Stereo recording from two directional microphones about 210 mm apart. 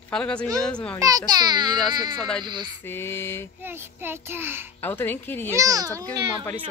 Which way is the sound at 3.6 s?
10° right (ahead or behind).